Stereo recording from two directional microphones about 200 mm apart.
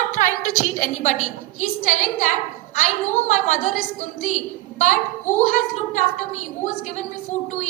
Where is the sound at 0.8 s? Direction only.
35° left (ahead or behind).